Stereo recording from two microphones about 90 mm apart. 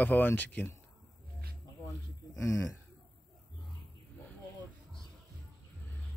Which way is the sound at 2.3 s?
35° left (ahead or behind).